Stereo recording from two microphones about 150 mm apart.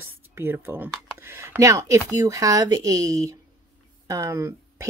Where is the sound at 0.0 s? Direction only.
15° right (ahead or behind).